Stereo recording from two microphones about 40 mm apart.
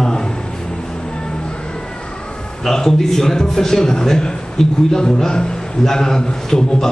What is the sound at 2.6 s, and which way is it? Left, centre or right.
A man's voice, centre.